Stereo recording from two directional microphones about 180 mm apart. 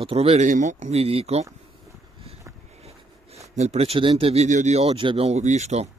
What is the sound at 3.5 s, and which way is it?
Speech, 35° right (ahead or behind).